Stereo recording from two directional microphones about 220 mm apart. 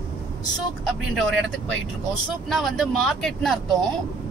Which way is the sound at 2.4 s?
Centre (ahead or behind).